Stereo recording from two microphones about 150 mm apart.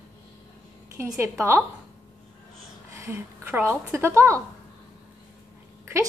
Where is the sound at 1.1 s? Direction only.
15° right (ahead or behind).